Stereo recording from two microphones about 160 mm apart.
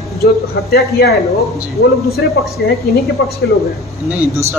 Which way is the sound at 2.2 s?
90° left.